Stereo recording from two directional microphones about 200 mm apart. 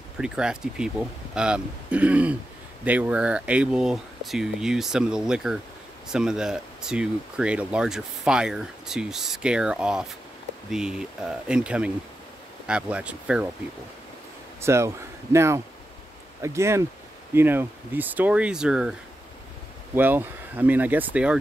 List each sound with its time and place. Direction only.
0.2 s speech: 5° right (ahead or behind)
14.6 s speech: 15° right (ahead or behind)
20.0 s speech: 10° right (ahead or behind)